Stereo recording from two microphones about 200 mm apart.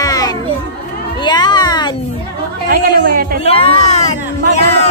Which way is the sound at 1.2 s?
20° left (ahead or behind).